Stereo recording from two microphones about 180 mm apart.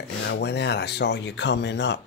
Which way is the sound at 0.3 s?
70° left (ahead or behind).